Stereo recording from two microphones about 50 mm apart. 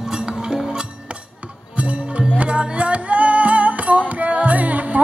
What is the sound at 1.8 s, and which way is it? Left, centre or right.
Music, right.